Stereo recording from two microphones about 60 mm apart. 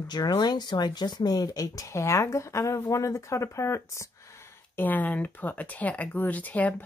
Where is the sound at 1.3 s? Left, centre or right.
Left.